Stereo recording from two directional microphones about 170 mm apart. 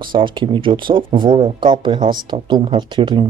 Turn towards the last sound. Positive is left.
turn(degrees=-30)  # may be behind; listen again after turning